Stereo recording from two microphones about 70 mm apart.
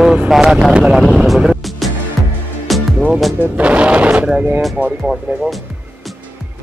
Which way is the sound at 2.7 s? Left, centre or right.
Centre.